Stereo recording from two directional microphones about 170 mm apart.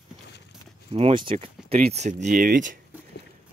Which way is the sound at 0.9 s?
30° right (ahead or behind).